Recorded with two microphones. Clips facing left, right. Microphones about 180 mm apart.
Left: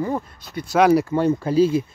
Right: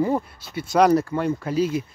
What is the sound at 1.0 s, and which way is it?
Speech, 25° left (ahead or behind).